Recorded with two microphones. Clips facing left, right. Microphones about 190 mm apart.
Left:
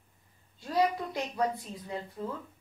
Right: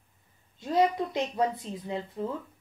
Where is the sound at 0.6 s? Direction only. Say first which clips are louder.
Right 3 dB; 20° right (ahead or behind).